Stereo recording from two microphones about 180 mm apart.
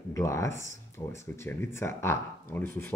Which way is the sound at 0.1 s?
15° left (ahead or behind).